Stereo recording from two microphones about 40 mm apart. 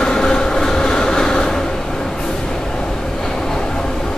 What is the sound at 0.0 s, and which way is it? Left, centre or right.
Train, centre.